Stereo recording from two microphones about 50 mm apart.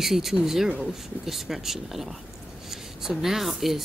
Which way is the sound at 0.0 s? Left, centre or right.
Centre.